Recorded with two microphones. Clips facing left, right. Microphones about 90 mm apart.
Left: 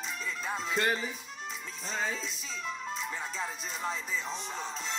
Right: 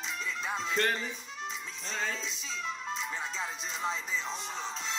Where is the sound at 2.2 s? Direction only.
45° left (ahead or behind).